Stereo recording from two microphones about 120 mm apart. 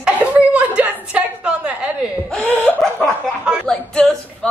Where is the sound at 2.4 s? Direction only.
15° left (ahead or behind).